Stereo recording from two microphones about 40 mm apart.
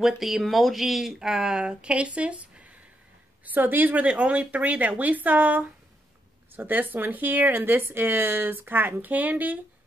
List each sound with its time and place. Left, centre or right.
0.0 s speech: centre
1.2 s speech: centre; by 2.7 s right
3.4 s speech: right
6.5 s speech: right